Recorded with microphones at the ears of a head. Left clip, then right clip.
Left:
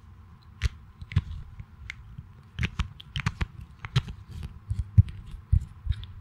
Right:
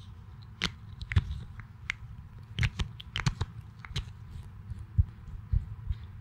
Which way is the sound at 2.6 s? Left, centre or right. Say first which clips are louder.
Even; centre.